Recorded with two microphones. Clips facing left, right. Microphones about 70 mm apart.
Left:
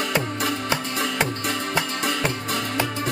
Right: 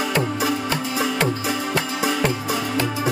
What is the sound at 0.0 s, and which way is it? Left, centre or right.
Music, centre.